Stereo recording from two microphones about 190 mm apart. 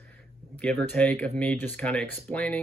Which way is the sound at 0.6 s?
5° left (ahead or behind).